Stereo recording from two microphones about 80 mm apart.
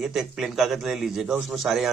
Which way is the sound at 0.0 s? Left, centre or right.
Centre.